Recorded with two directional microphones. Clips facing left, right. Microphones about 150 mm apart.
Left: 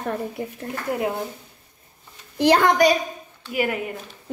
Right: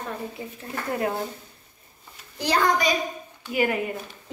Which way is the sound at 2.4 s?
60° left (ahead or behind).